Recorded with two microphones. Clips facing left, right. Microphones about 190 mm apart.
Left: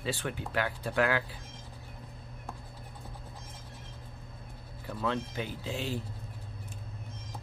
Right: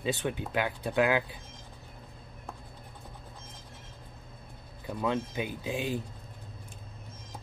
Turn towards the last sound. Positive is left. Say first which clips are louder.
# right 3 dB
turn(degrees=-15)  # may be behind; listen again after turning